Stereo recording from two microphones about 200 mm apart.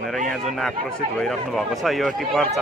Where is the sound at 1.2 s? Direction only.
Centre (ahead or behind).